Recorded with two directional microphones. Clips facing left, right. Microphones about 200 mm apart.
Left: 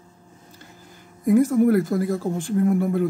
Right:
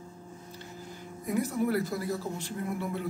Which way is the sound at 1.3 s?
45° left (ahead or behind).